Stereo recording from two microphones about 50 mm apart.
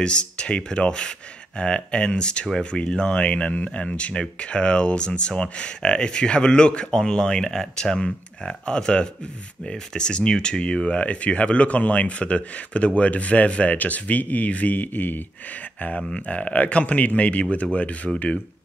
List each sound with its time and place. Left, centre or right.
0.0 s speech: centre
18.1 s speech: centre